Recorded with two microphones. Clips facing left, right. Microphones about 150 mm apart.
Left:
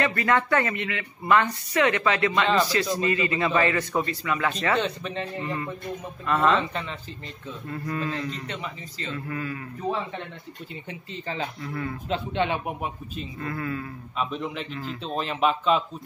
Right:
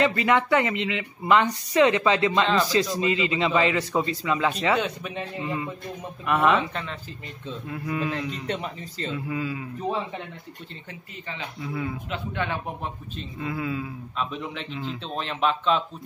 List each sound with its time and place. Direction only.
0.0 s speech: 20° right (ahead or behind)
2.4 s a man's voice: 5° left (ahead or behind)
3.0 s a man's voice: 20° right (ahead or behind)
6.6 s a man's voice: centre (ahead or behind)
8.5 s speech: 40° right (ahead or behind)
9.1 s a man's voice: 15° right (ahead or behind)
11.6 s a man's voice: 10° right (ahead or behind)
12.1 s speech: 20° left (ahead or behind)
13.4 s a man's voice: 10° right (ahead or behind)
14.1 s a man's voice: centre (ahead or behind)